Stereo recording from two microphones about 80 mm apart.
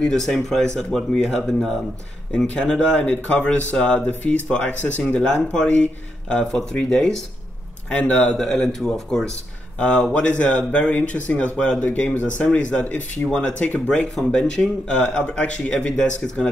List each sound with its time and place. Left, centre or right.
0.0 s speech: centre